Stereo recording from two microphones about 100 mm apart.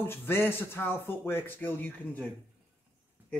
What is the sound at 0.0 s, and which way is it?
Speech, 20° left (ahead or behind).